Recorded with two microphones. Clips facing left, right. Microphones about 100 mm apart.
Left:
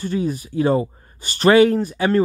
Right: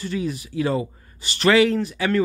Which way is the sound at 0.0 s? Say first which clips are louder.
Left 4 dB; 35° left (ahead or behind).